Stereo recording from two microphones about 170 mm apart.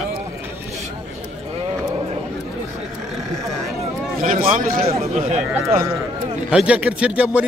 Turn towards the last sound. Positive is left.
turn(degrees=-5)  # may be behind; listen again after turning